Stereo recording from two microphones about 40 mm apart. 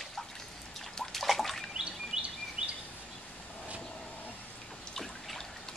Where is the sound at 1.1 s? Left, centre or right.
Centre.